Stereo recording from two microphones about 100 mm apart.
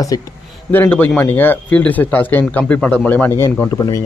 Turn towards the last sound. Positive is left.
turn(degrees=40)  # may be behind; listen again after turning